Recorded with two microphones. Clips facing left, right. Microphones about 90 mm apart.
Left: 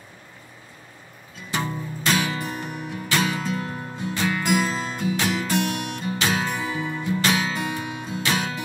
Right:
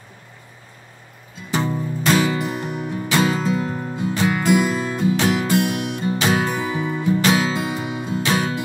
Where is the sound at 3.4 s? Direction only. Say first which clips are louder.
Right 6 dB; 20° right (ahead or behind).